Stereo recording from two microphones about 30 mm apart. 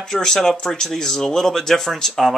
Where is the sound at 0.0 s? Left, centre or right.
Centre.